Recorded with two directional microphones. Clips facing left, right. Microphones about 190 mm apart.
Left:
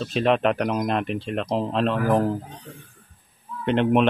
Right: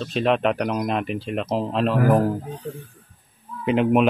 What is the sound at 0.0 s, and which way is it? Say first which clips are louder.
Speech: even; centre (ahead or behind).